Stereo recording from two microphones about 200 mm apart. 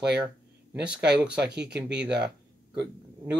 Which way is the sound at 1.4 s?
55° right (ahead or behind).